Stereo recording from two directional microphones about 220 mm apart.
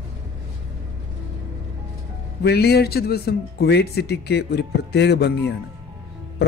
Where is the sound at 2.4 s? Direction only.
45° left (ahead or behind).